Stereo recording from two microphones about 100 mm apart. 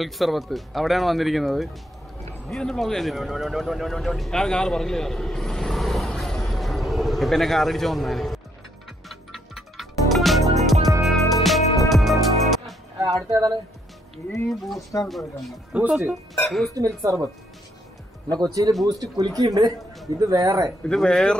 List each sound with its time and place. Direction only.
0.0 s speech: centre (ahead or behind)
9.1 s music: centre (ahead or behind)
13.0 s speech: 35° right (ahead or behind)
14.5 s speech: centre (ahead or behind)
15.7 s speech: 10° right (ahead or behind)
16.4 s speech: centre (ahead or behind)
16.7 s speech: 35° right (ahead or behind)
18.3 s speech: 40° right (ahead or behind)
20.8 s speech: 5° left (ahead or behind)